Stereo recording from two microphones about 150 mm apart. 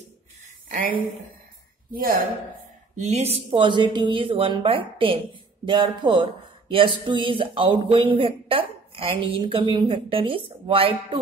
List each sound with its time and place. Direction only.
1.9 s speech: 75° right (ahead or behind)
3.0 s a woman's voice: 45° right (ahead or behind)
3.4 s speech: 30° right (ahead or behind)